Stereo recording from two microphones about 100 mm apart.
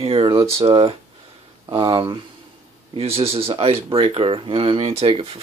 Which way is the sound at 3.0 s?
80° right.